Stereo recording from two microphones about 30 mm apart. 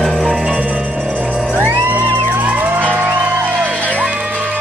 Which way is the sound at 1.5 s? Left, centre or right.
Right.